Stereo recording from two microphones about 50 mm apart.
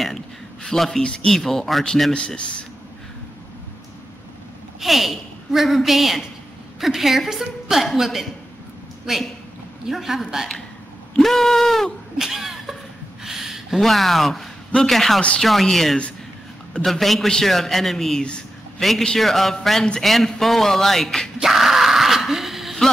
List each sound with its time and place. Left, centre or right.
0.7 s a man's voice: centre
1.0 s a man's voice: centre
2.1 s speech: left
4.7 s a woman's voice: centre
12.2 s laughter: centre
13.2 s a sound: centre
14.8 s a woman's voice: centre
21.4 s a sound: centre